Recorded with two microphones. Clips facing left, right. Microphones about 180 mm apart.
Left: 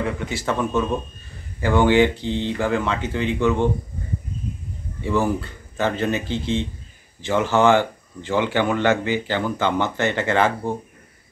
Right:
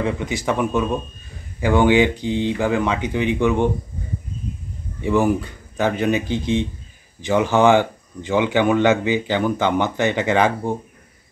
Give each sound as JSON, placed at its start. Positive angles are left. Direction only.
{"t": 0.0, "sound": "speech", "side_deg": -15}
{"t": 5.0, "sound": "speech", "side_deg": -15}